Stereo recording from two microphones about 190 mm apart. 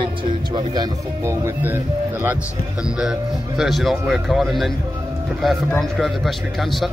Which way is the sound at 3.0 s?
Centre (ahead or behind).